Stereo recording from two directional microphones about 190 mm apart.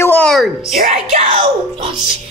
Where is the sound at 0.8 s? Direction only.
40° right (ahead or behind).